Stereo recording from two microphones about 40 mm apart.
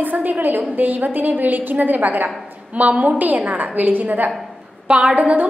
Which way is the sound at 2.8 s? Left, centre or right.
Right.